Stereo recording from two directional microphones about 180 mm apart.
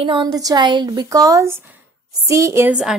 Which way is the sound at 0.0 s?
25° right (ahead or behind).